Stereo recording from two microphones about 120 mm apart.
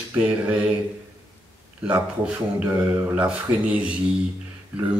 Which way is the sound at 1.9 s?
15° right (ahead or behind).